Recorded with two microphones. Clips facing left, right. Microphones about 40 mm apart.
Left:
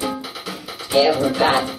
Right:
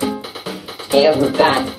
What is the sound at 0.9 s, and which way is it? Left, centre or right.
Music, centre.